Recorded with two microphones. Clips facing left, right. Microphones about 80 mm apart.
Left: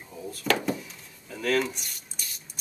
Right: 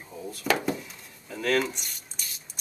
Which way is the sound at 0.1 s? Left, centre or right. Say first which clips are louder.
Even; centre.